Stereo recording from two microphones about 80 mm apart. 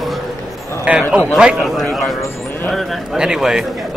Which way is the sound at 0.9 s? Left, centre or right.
Centre.